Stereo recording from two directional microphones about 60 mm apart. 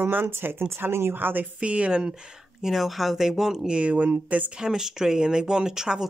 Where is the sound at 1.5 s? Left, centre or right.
Centre.